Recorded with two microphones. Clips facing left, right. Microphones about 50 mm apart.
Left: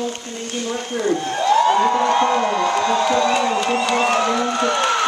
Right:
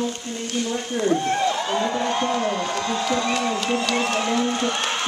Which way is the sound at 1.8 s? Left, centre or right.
Left.